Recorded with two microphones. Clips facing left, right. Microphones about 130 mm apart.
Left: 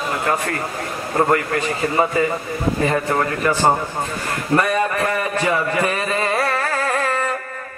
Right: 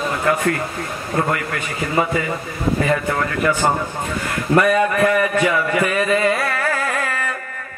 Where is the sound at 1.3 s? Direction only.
35° left (ahead or behind).